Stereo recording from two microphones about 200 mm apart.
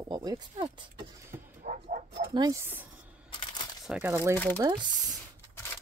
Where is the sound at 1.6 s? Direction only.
40° right (ahead or behind).